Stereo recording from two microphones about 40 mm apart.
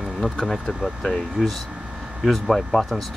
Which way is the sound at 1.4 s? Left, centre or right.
Centre.